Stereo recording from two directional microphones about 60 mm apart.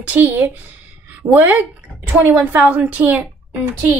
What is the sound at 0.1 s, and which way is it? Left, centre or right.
A woman's voice, right.